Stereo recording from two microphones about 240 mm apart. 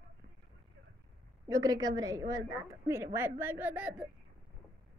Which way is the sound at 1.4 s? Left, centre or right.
Centre.